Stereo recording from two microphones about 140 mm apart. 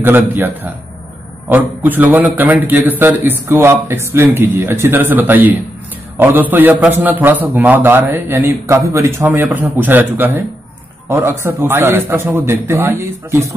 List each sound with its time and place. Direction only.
0.0 s a man's voice: 15° right (ahead or behind)
1.5 s a man's voice: 15° right (ahead or behind)